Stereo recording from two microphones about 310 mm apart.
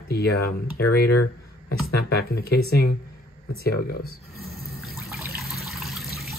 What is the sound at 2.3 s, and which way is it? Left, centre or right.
Speech, left.